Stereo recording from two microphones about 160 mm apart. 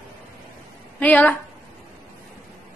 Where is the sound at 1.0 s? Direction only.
10° left (ahead or behind).